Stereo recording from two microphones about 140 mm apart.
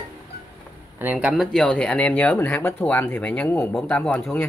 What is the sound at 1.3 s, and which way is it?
Speech, centre (ahead or behind).